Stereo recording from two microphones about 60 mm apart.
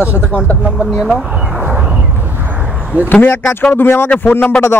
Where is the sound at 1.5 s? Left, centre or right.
Right.